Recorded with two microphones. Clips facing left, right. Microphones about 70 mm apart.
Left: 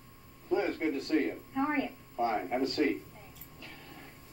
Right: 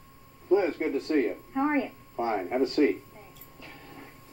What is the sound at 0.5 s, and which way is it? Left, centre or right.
Speech, right.